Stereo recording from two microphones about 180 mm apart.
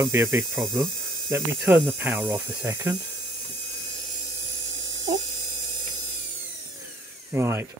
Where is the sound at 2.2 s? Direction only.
25° right (ahead or behind).